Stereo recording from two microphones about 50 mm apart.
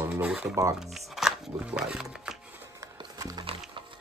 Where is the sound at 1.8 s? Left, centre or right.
Centre.